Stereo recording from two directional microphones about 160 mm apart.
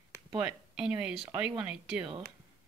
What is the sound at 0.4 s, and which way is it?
Speech, 5° right (ahead or behind).